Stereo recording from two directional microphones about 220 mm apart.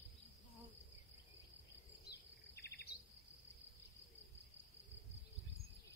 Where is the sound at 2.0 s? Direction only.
45° left (ahead or behind).